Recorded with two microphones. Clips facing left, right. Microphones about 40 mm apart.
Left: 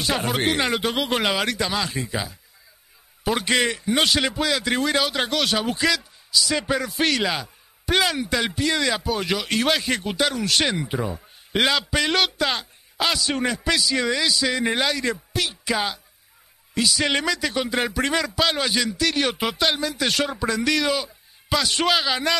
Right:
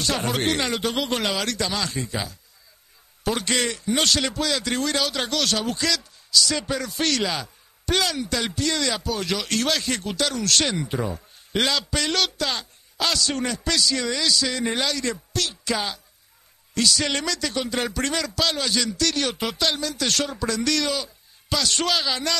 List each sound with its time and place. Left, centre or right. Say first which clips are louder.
0.2 s a man's voice: left 1 dB; centre